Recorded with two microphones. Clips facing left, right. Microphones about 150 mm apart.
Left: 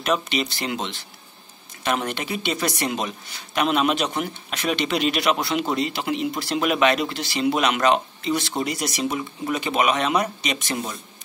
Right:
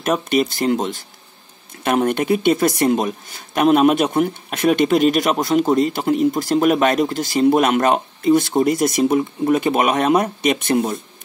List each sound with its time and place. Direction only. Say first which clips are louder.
0.0 s speech: right 6 dB; 45° right (ahead or behind)